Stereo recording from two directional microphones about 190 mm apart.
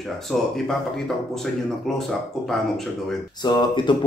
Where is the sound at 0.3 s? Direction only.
Centre (ahead or behind).